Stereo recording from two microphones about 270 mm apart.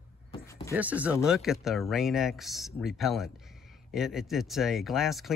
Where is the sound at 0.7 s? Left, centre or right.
Centre.